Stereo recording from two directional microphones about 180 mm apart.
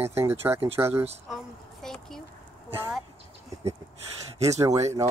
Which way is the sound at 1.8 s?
Centre (ahead or behind).